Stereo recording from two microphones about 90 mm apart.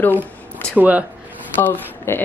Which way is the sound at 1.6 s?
20° left (ahead or behind).